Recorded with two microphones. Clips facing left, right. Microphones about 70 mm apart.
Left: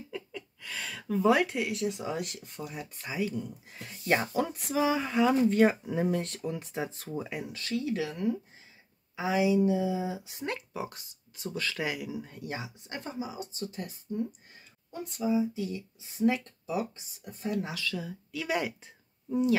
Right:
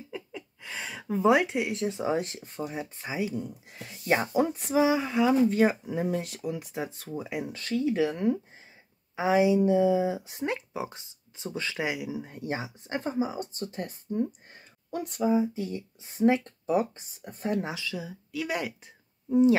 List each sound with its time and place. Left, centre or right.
0.6 s speech: right
3.4 s speech: centre
4.3 s speech: right
4.7 s speech: centre
7.4 s speech: right
10.4 s speech: centre; by 14.2 s right
14.9 s speech: right
17.6 s speech: centre
19.2 s speech: right